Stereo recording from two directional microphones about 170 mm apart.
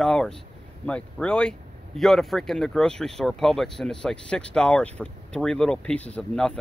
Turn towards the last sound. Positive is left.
turn(degrees=5)  # may be behind; listen again after turning